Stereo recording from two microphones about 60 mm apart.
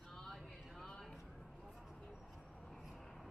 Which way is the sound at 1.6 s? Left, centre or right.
Centre.